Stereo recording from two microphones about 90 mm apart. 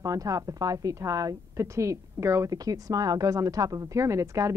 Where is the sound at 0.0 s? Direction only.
40° right (ahead or behind).